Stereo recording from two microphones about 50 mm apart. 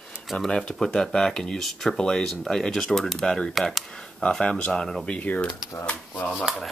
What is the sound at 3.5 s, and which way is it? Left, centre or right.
Speech, centre.